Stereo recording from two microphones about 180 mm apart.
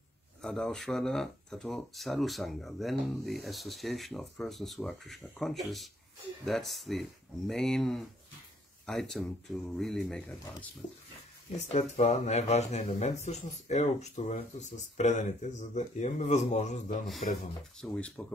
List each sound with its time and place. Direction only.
0.4 s speech: 5° left (ahead or behind)
11.5 s speech: 40° left (ahead or behind)
17.7 s speech: 5° left (ahead or behind)